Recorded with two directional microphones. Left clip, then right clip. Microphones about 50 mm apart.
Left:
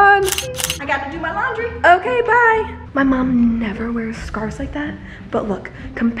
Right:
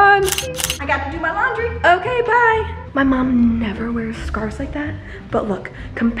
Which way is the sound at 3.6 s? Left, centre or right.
Centre.